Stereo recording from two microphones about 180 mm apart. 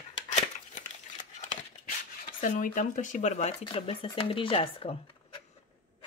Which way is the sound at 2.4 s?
45° left (ahead or behind).